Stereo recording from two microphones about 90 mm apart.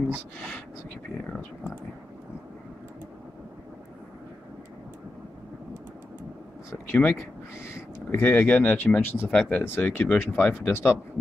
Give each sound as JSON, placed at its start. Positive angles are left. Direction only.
{"t": 6.9, "sound": "speech", "side_deg": 20}
{"t": 9.3, "sound": "speech", "side_deg": 15}